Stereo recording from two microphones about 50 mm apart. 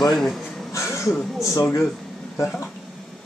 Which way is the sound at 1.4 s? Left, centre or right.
Left.